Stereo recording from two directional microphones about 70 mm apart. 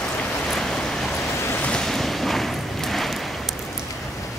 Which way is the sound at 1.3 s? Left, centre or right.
Left.